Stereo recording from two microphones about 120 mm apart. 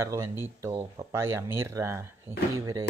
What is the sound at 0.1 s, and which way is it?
Speech, 25° right (ahead or behind).